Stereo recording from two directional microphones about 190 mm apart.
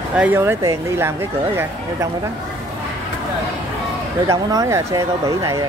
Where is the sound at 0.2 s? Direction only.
10° right (ahead or behind).